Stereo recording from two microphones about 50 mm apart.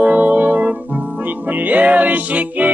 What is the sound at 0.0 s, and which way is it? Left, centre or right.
Music, right.